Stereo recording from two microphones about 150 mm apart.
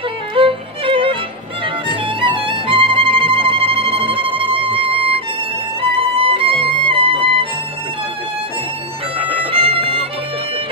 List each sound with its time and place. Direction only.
0.3 s music: 35° right (ahead or behind)
9.4 s music: 40° right (ahead or behind)